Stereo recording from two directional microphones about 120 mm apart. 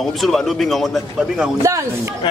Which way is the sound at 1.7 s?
25° right (ahead or behind).